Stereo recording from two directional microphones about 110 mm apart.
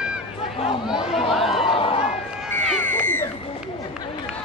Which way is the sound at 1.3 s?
Centre (ahead or behind).